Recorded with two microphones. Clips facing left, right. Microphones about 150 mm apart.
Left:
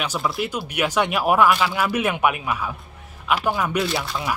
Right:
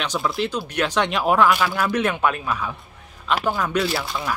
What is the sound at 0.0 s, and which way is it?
Speech, 5° left (ahead or behind).